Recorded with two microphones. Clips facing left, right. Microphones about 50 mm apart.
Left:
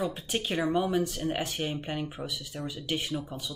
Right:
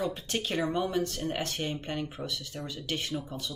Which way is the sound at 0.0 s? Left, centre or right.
Centre.